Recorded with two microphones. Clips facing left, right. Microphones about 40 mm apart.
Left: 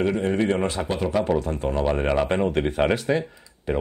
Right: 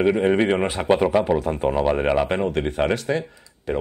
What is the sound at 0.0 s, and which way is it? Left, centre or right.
Speech, right.